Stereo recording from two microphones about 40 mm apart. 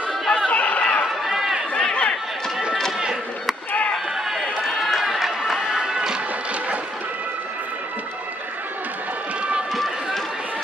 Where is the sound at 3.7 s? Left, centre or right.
Left.